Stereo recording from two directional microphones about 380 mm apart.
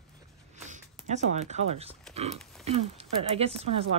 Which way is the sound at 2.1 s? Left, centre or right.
Centre.